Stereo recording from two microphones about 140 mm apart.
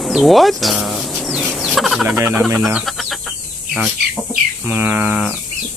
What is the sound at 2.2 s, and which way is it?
Speech, 15° right (ahead or behind).